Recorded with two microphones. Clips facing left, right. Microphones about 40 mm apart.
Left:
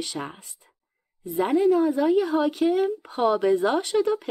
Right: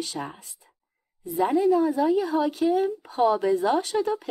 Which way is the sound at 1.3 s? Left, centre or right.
Left.